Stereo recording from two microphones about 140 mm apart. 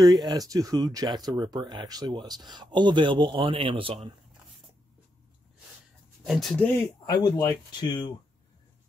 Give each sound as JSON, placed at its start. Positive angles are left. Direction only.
{"t": 0.0, "sound": "speech", "side_deg": -30}
{"t": 6.2, "sound": "speech", "side_deg": 0}
{"t": 6.5, "sound": "speech", "side_deg": 15}
{"t": 7.1, "sound": "speech", "side_deg": 30}